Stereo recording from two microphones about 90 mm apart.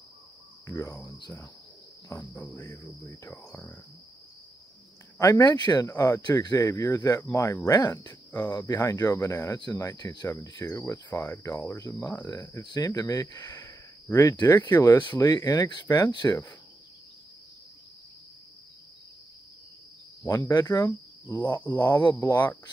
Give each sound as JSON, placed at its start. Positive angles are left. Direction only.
{"t": 0.7, "sound": "speech", "side_deg": 35}
{"t": 2.1, "sound": "cricket", "side_deg": 15}
{"t": 5.2, "sound": "speech", "side_deg": 45}
{"t": 5.9, "sound": "speech", "side_deg": 35}
{"t": 10.6, "sound": "speech", "side_deg": 35}
{"t": 11.1, "sound": "cricket", "side_deg": 25}
{"t": 11.9, "sound": "speech", "side_deg": 15}
{"t": 12.6, "sound": "speech", "side_deg": 50}
{"t": 15.1, "sound": "speech", "side_deg": 45}
{"t": 20.2, "sound": "speech", "side_deg": 50}
{"t": 21.6, "sound": "cricket", "side_deg": 20}